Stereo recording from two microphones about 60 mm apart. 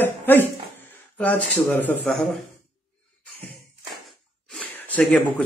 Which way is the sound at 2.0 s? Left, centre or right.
Centre.